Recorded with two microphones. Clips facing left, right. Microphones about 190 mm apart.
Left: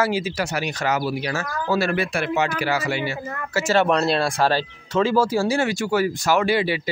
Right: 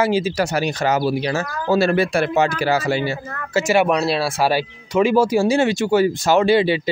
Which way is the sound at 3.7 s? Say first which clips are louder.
Right 1 dB; 10° right (ahead or behind).